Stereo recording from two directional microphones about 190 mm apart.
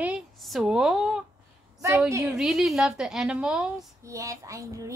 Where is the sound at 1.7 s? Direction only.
15° right (ahead or behind).